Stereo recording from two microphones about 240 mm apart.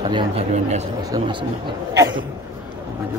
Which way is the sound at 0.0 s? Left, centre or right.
Right.